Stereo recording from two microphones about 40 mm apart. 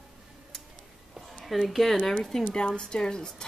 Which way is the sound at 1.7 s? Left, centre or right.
Centre.